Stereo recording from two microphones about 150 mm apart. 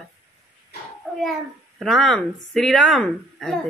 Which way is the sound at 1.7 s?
Centre (ahead or behind).